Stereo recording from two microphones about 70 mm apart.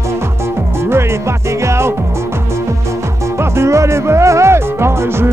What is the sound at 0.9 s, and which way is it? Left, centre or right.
Music, right.